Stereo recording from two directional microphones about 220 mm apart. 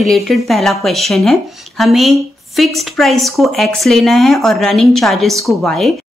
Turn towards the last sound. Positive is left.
turn(degrees=0)  # may be behind; listen again after turning